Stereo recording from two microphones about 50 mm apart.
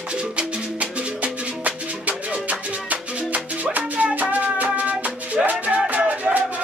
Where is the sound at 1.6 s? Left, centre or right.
Right.